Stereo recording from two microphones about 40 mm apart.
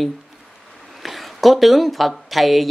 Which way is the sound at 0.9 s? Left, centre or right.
Centre.